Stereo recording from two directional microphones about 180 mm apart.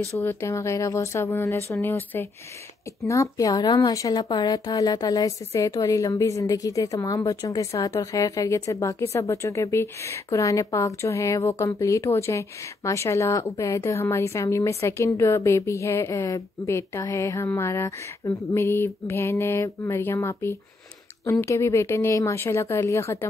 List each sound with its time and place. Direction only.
0.0 s a woman's voice: 15° left (ahead or behind)